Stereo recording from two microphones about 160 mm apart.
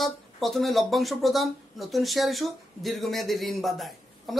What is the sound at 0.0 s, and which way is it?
Speech, centre (ahead or behind).